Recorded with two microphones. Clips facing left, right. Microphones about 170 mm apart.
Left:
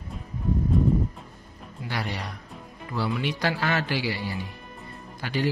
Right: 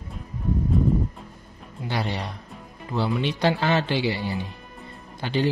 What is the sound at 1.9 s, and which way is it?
Speech, 25° right (ahead or behind).